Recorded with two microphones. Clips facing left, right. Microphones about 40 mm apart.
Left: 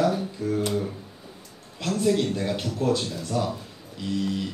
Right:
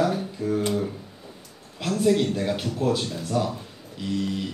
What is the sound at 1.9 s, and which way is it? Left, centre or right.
Speech, centre.